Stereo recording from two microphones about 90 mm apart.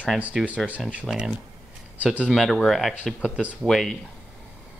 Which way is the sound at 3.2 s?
15° right (ahead or behind).